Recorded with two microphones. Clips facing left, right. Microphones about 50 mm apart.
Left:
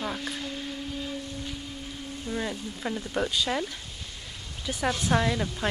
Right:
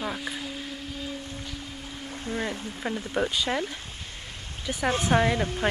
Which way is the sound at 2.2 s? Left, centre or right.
Right.